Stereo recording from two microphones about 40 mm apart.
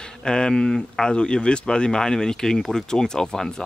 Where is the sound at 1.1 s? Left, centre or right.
Left.